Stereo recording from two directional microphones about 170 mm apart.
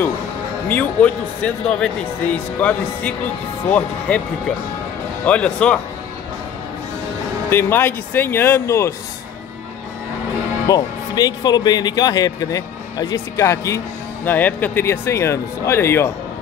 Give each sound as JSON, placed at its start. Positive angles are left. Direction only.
{"t": 0.7, "sound": "speech", "side_deg": 10}
{"t": 7.4, "sound": "speech", "side_deg": 15}
{"t": 10.7, "sound": "speech", "side_deg": 20}